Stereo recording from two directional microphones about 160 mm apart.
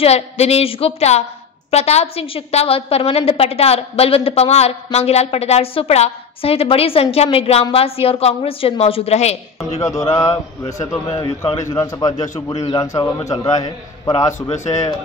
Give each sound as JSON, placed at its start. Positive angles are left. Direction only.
{"t": 0.0, "sound": "a woman's voice", "side_deg": 40}
{"t": 9.8, "sound": "a man's voice", "side_deg": 20}
{"t": 14.5, "sound": "a man's voice", "side_deg": 45}